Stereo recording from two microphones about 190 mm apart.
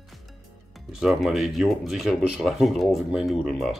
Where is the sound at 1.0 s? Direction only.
Centre (ahead or behind).